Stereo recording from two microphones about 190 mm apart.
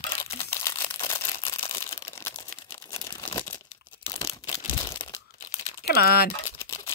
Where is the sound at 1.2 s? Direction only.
30° left (ahead or behind).